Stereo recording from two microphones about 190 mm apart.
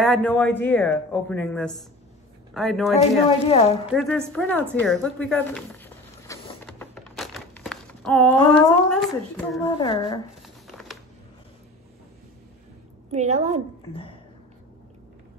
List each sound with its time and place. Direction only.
0.0 s a woman's voice: 5° left (ahead or behind)
3.0 s speech: 30° left (ahead or behind)
3.9 s a woman's voice: 5° left (ahead or behind)
4.8 s a sound: centre (ahead or behind)
8.9 s a woman's voice: centre (ahead or behind)
9.7 s speech: 25° left (ahead or behind)
10.4 s a sound: centre (ahead or behind)
13.1 s a woman's voice: 35° right (ahead or behind)